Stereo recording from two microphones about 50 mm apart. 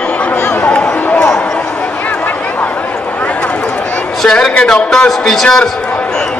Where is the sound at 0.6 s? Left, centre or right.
Left.